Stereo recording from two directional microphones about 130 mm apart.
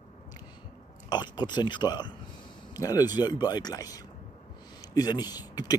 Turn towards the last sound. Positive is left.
turn(degrees=30)  # may be behind; listen again after turning